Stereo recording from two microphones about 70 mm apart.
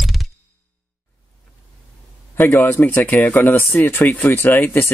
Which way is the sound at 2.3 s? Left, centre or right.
Left.